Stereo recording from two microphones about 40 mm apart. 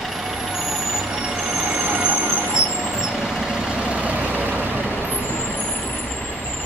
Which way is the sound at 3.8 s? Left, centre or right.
Right.